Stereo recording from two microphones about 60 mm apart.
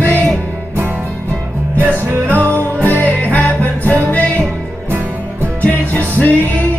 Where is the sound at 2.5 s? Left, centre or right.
Left.